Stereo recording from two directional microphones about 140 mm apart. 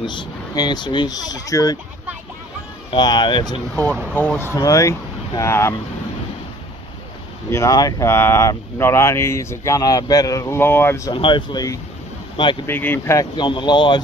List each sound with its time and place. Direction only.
0.0 s speech: 30° left (ahead or behind)
2.9 s speech: 30° left (ahead or behind)
4.1 s speech: 10° left (ahead or behind)
7.5 s speech: 25° left (ahead or behind)
11.1 s speech: 35° left (ahead or behind)
12.6 s speech: 15° left (ahead or behind)
13.4 s speech: 35° left (ahead or behind)